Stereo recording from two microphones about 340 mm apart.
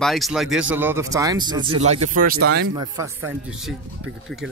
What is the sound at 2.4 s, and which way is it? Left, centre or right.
Speech, right.